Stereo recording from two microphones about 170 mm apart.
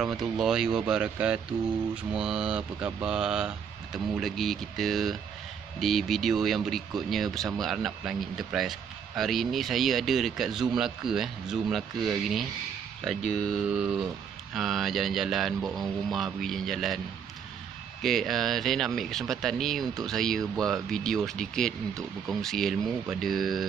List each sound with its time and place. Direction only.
0.0 s speech: centre (ahead or behind)
18.0 s speech: centre (ahead or behind)